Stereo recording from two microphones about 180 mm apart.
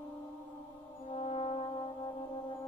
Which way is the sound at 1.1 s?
35° left (ahead or behind).